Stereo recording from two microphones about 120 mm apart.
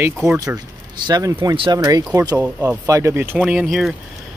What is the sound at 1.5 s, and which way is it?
Speech, 45° right (ahead or behind).